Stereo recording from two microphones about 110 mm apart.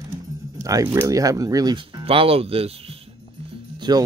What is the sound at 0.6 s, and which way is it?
Speech, 30° right (ahead or behind).